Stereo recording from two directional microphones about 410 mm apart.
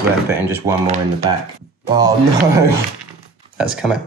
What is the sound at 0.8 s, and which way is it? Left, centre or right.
Speech, centre.